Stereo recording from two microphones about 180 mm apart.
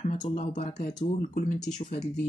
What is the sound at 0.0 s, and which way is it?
Speech, 40° left (ahead or behind).